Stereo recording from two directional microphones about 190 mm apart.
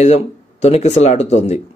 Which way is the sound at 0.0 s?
35° left (ahead or behind).